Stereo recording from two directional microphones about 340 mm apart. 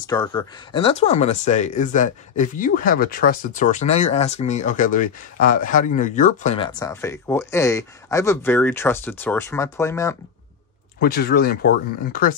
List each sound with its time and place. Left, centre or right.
0.0 s speech: centre
11.0 s speech: left